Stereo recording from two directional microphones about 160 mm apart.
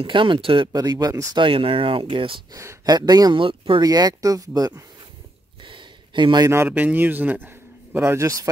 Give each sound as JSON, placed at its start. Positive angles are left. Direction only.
{"t": 0.0, "sound": "speech", "side_deg": -30}
{"t": 5.7, "sound": "a sound", "side_deg": -30}
{"t": 6.5, "sound": "a man's voice", "side_deg": -10}